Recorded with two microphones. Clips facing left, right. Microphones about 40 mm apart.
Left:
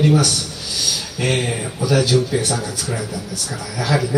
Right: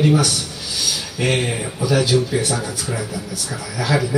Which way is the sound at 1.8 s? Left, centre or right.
Centre.